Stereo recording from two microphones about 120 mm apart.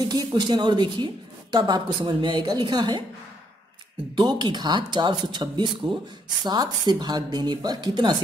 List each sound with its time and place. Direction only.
0.1 s a woman's voice: 35° right (ahead or behind)
4.1 s a woman's voice: 40° right (ahead or behind)